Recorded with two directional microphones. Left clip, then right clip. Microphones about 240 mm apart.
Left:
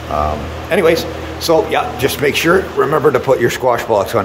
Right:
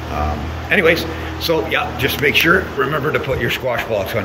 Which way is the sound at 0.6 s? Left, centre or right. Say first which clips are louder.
Left 1 dB; centre.